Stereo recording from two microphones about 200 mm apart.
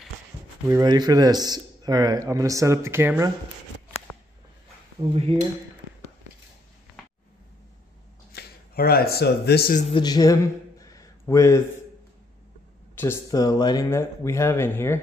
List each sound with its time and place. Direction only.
0.7 s speech: 20° right (ahead or behind)
5.0 s speech: 30° right (ahead or behind)
8.3 s speech: 50° left (ahead or behind)
9.9 s a man's voice: 20° left (ahead or behind)
12.9 s speech: 10° left (ahead or behind)